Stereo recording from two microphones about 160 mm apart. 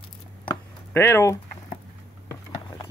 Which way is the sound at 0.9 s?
15° left (ahead or behind).